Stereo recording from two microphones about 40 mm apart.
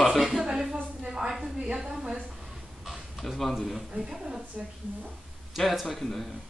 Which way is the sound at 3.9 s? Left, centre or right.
Centre.